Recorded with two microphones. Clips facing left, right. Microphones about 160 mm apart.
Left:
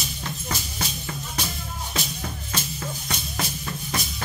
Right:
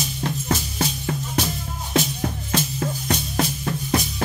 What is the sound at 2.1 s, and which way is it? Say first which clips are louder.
Music: right 8 dB; 50° right (ahead or behind).